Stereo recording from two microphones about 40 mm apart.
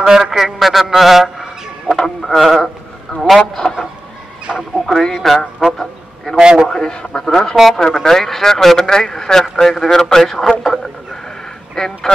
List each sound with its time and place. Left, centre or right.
0.0 s a man's voice: centre
2.0 s a sound: centre
3.3 s speech: centre
4.6 s speech: centre
5.0 s speech: centre
5.4 s a sound: centre
6.4 s a man's voice: centre
6.7 s speech: centre
11.7 s speech: centre